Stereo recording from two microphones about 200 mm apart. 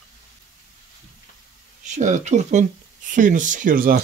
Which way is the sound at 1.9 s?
35° right (ahead or behind).